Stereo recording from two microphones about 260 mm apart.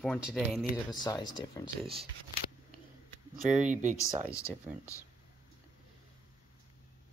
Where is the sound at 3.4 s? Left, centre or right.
Right.